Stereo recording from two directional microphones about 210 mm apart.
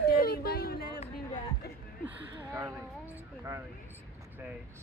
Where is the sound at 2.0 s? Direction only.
15° right (ahead or behind).